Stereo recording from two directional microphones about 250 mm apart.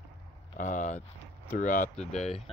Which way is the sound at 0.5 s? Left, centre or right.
Left.